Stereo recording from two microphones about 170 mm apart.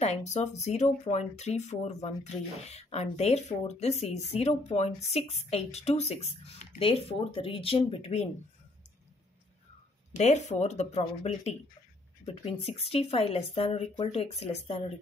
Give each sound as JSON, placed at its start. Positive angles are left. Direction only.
{"t": 0.0, "sound": "speech", "side_deg": 40}
{"t": 10.1, "sound": "speech", "side_deg": 45}